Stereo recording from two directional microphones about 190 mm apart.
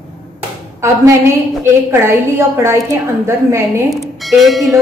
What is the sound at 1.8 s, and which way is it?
A woman's voice, 15° right (ahead or behind).